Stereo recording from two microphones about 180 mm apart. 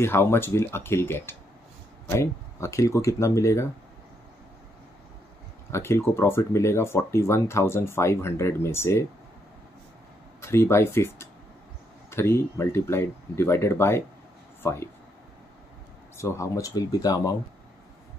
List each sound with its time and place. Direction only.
0.0 s speech: 15° left (ahead or behind)
5.7 s speech: 15° left (ahead or behind)
10.4 s speech: 15° left (ahead or behind)
16.2 s speech: 15° left (ahead or behind)